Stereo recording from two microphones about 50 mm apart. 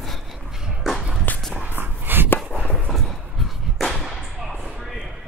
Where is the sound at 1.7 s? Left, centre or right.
Right.